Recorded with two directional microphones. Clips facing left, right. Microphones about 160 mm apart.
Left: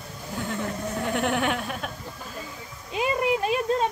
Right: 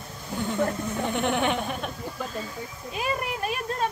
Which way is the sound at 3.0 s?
20° left (ahead or behind).